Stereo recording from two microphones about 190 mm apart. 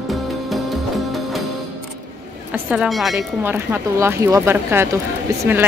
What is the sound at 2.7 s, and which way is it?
Speech, centre (ahead or behind).